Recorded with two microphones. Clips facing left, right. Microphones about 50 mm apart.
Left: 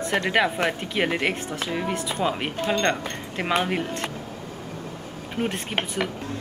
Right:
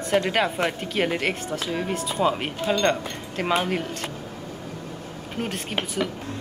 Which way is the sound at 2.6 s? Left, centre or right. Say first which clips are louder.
Right 1 dB; left.